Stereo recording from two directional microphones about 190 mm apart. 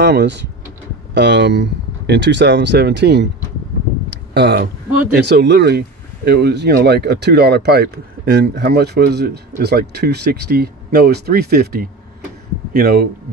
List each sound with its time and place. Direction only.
0.0 s speech: 65° right (ahead or behind)
4.3 s speech: 60° right (ahead or behind)